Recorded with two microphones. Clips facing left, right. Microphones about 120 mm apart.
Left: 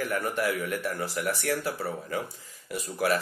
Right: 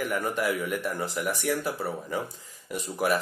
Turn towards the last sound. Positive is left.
turn(degrees=-15)  # may be behind; listen again after turning